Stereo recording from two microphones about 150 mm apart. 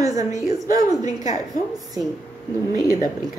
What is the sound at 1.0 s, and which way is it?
Speech, 55° left (ahead or behind).